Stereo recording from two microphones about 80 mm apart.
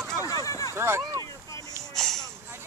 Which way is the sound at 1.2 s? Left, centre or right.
Left.